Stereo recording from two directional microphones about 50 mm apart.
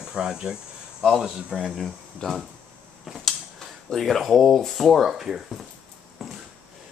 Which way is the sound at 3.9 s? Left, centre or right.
Centre.